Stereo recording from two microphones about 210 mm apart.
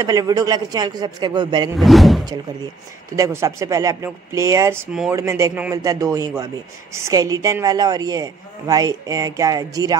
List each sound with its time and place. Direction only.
0.0 s a man's voice: 15° right (ahead or behind)
1.8 s speech: centre (ahead or behind)
3.2 s a man's voice: 15° right (ahead or behind)